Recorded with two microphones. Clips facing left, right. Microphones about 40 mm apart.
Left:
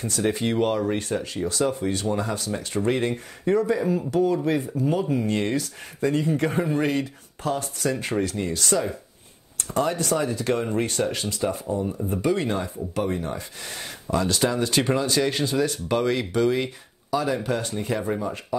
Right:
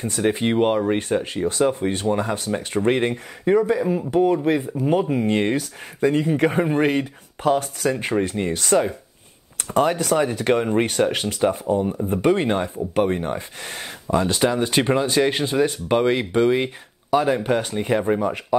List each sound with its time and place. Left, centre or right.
0.0 s speech: right
3.4 s speech: right
4.1 s speech: right
6.5 s speech: right
12.1 s speech: right
14.0 s speech: right
18.2 s speech: right